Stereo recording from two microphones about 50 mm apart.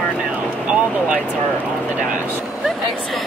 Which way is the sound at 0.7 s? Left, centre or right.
Right.